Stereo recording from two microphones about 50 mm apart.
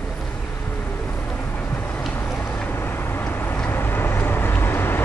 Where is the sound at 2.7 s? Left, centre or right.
Left.